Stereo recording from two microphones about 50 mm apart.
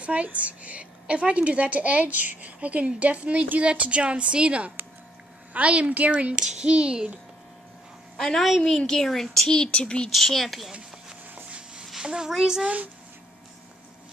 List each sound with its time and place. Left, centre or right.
0.0 s a woman's voice: right
6.3 s a woman's voice: centre
8.2 s a woman's voice: centre
9.6 s a woman's voice: centre
10.1 s speech: centre
11.8 s a child's voice: centre
12.6 s speech: right